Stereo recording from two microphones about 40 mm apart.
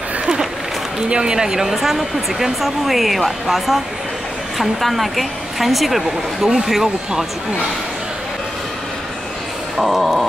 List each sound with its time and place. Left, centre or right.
1.0 s a woman's voice: right
9.8 s a woman's voice: centre